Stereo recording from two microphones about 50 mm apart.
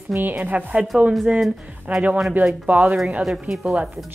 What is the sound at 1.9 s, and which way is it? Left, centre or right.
Speech, right.